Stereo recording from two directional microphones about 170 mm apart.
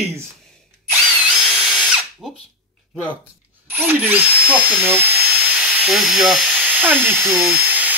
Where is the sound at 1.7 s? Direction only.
Centre (ahead or behind).